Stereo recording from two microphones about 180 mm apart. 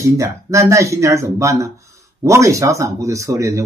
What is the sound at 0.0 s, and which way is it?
Speech, 15° right (ahead or behind).